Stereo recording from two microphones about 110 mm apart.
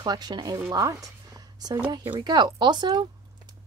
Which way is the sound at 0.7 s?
30° right (ahead or behind).